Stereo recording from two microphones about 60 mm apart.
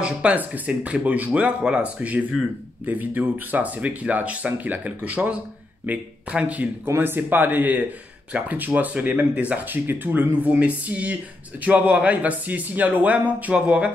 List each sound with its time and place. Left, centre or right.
0.0 s speech: right